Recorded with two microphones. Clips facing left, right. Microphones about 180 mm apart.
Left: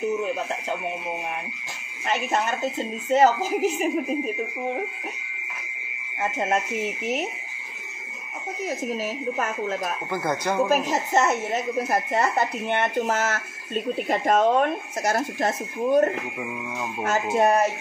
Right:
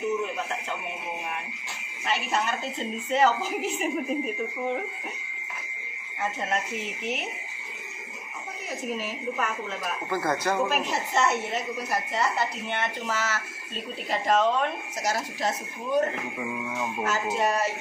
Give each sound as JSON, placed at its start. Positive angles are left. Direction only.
{"t": 3.1, "sound": "speech", "side_deg": 45}
{"t": 10.1, "sound": "speech", "side_deg": 15}
{"t": 10.7, "sound": "speech", "side_deg": 45}
{"t": 17.0, "sound": "speech", "side_deg": 55}